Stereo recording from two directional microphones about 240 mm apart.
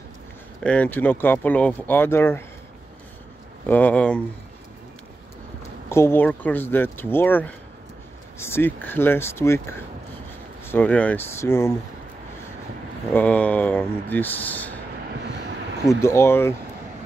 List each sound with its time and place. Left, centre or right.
0.7 s speech: centre
3.6 s speech: centre
5.9 s speech: centre
13.1 s speech: centre
16.0 s speech: centre